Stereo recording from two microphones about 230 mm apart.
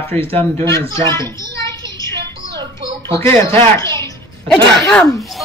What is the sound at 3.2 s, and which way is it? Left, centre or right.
A child's voice, centre.